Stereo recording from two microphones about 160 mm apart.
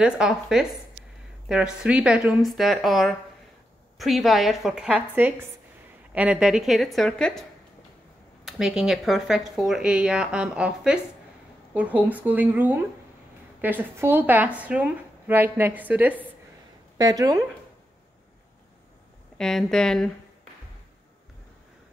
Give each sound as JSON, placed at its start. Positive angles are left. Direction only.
{"t": 0.0, "sound": "speech", "side_deg": -5}
{"t": 8.5, "sound": "a woman's voice", "side_deg": -5}
{"t": 17.0, "sound": "speech", "side_deg": -20}
{"t": 19.3, "sound": "speech", "side_deg": 5}